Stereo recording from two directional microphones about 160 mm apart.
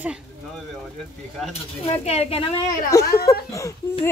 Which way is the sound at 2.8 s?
20° left (ahead or behind).